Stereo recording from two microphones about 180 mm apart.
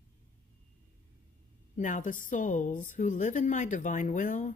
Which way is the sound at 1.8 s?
45° left (ahead or behind).